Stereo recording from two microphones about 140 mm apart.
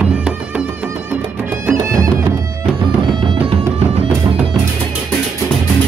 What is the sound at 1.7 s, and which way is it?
Music, 20° right (ahead or behind).